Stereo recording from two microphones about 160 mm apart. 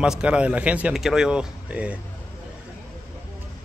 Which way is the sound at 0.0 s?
5° right (ahead or behind).